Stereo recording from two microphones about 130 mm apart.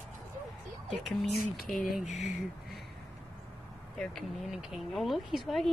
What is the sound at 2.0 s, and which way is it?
Speech, 65° left (ahead or behind).